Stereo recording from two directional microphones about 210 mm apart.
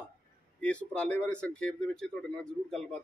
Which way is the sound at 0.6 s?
5° left (ahead or behind).